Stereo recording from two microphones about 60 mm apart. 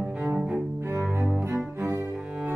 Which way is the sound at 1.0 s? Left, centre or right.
Right.